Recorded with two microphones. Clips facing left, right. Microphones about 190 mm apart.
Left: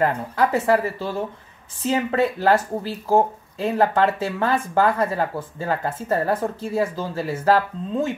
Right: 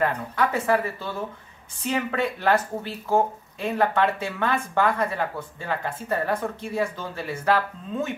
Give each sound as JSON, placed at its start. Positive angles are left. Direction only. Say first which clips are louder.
{"t": 0.0, "sound": "speech", "louder": "left 3 dB", "side_deg": 35}